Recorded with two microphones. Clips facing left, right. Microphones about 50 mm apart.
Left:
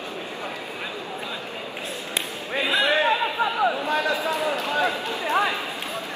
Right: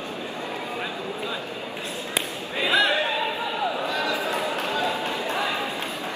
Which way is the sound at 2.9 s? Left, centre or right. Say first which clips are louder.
Left 3 dB; left.